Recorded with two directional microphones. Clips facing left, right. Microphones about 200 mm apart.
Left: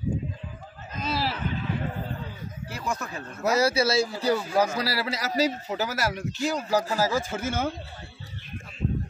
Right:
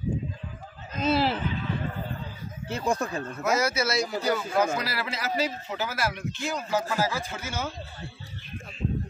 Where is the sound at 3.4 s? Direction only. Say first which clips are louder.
Left 4 dB; 35° left (ahead or behind); by 7.7 s 50° left (ahead or behind).